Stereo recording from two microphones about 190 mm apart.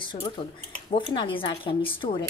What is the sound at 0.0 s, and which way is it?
Speech, 25° left (ahead or behind).